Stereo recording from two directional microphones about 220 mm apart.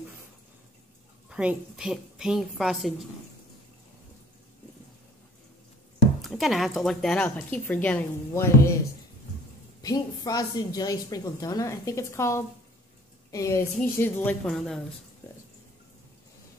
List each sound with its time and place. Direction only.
1.3 s a woman's voice: 5° right (ahead or behind)
6.2 s a woman's voice: centre (ahead or behind)
9.8 s a woman's voice: 15° left (ahead or behind); by 14.8 s centre (ahead or behind)